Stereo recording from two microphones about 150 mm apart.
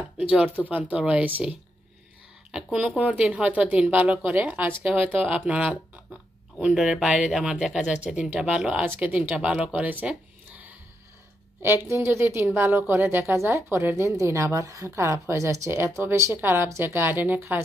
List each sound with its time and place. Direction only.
0.2 s a woman's voice: 10° right (ahead or behind)